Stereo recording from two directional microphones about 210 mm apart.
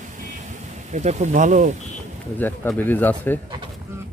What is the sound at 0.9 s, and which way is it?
Speech, 35° right (ahead or behind).